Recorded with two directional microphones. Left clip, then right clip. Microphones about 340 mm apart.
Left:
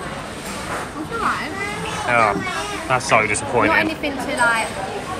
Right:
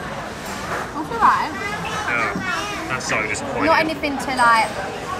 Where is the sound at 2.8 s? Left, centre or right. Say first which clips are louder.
Left 8 dB; centre.